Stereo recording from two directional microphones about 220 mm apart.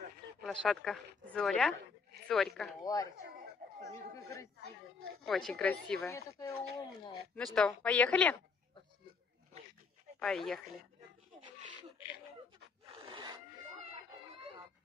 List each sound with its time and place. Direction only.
0.5 s a woman's voice: 5° left (ahead or behind)
2.8 s speech: 15° left (ahead or behind)
5.2 s a woman's voice: centre (ahead or behind)
10.1 s speech: centre (ahead or behind)
13.1 s a sound: 20° right (ahead or behind)